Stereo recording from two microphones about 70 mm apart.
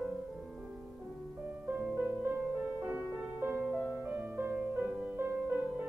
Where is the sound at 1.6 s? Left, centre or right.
Right.